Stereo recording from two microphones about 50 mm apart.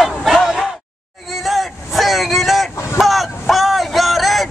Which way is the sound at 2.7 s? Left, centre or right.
Left.